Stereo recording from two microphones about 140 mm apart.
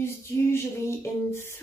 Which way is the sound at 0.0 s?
20° left (ahead or behind).